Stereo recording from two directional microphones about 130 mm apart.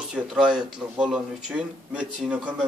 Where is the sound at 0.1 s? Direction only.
5° right (ahead or behind).